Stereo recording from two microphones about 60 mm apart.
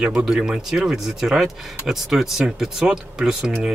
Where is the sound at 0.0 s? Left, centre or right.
Centre.